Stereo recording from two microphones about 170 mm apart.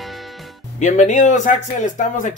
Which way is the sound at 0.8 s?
45° left (ahead or behind).